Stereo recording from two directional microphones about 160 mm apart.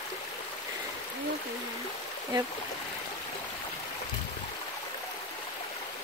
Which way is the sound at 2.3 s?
30° right (ahead or behind).